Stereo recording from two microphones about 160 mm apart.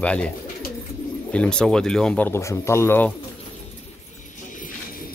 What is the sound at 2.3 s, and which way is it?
Speech, 15° left (ahead or behind).